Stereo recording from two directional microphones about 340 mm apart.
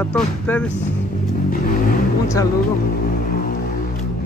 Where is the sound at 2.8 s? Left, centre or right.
Left.